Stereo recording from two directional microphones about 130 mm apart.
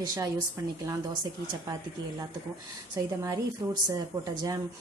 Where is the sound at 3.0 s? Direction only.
25° right (ahead or behind).